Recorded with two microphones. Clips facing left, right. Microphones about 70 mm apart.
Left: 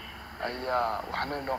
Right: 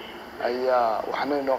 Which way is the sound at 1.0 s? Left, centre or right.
Centre.